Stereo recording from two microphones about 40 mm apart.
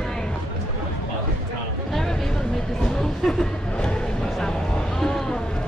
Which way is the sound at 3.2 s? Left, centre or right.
Centre.